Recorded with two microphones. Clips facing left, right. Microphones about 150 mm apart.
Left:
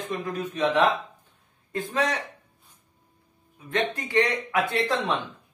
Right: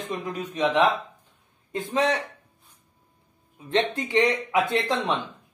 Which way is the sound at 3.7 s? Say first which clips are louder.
Right 2 dB; 25° right (ahead or behind).